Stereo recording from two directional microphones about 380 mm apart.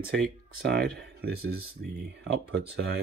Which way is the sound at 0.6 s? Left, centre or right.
Right.